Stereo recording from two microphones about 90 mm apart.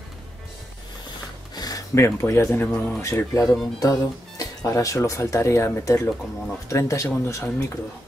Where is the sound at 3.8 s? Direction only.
40° left (ahead or behind).